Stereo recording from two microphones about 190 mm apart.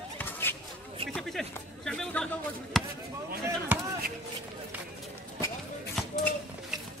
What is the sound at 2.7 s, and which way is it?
Basketball bounce, centre (ahead or behind).